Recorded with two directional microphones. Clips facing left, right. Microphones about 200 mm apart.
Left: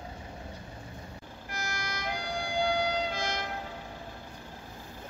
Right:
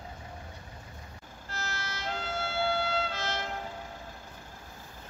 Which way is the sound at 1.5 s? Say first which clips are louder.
Left 1 dB; 15° left (ahead or behind).